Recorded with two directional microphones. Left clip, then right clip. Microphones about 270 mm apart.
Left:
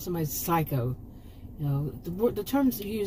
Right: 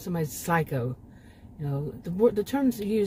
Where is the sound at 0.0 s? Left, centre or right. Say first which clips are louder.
Even; centre.